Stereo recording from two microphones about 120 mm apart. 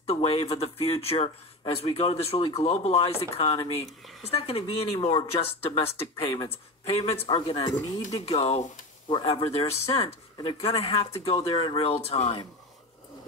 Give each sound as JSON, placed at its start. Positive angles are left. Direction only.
{"t": 0.0, "sound": "speech", "side_deg": 55}
{"t": 8.3, "sound": "speech", "side_deg": 60}